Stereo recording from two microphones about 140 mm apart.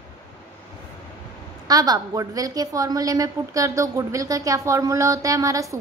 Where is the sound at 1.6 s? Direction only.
25° right (ahead or behind).